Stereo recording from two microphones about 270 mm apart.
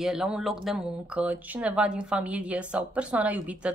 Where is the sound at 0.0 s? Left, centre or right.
Centre.